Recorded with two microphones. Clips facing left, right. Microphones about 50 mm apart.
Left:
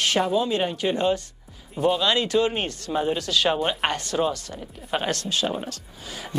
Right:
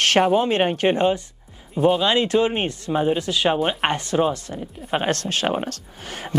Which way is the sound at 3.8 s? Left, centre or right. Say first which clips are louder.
Right 5 dB; right.